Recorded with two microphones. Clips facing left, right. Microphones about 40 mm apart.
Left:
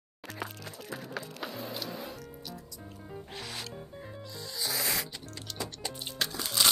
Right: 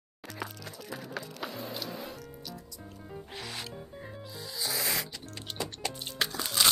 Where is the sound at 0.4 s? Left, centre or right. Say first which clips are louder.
Even; centre.